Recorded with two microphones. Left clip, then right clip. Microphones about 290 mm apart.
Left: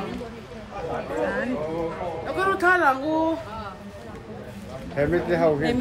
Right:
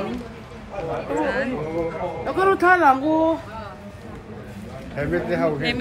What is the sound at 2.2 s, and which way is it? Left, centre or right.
Speech, right.